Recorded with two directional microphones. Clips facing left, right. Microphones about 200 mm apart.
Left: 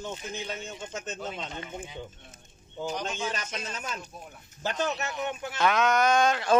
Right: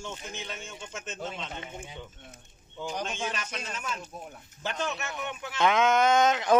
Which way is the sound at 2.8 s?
40° left (ahead or behind).